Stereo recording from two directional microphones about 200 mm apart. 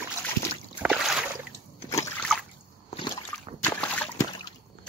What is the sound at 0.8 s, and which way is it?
Boat, 5° right (ahead or behind).